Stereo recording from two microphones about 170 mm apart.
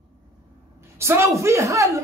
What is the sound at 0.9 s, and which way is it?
Speech, 15° right (ahead or behind).